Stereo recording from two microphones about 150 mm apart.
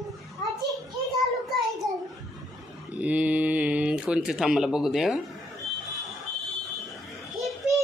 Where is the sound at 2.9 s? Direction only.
10° right (ahead or behind).